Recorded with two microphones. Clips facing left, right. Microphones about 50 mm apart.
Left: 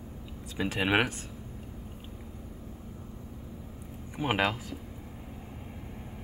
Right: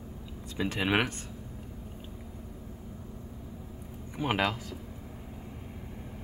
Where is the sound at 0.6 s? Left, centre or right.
Centre.